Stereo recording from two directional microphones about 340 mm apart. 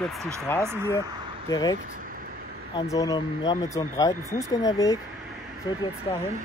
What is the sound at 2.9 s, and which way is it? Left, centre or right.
Speech, centre.